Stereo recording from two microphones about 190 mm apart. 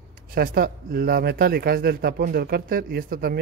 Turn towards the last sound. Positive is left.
turn(degrees=-55)  # may be behind; listen again after turning